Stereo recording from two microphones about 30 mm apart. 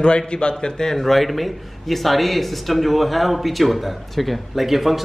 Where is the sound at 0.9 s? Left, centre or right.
Centre.